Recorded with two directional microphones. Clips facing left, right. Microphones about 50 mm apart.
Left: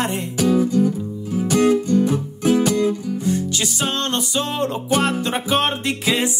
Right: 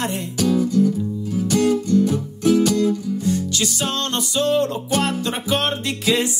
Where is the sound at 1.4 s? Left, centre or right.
Left.